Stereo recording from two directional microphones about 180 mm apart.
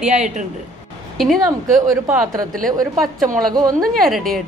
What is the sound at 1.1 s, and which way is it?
Speech, centre (ahead or behind).